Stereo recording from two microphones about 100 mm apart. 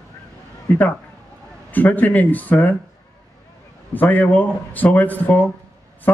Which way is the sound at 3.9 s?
15° left (ahead or behind).